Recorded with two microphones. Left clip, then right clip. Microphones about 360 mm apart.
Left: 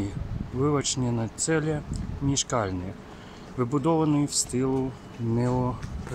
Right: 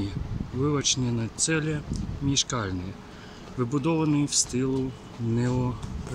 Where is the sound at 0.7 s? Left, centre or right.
Centre.